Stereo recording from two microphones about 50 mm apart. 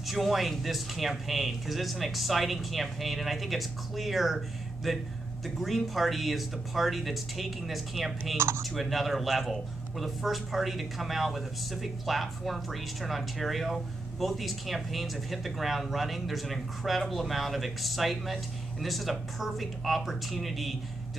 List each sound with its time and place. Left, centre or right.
0.0 s speech: centre
8.4 s speech: right
8.7 s speech: centre